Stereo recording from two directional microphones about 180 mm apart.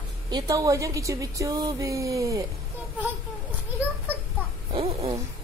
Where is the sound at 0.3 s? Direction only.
20° right (ahead or behind).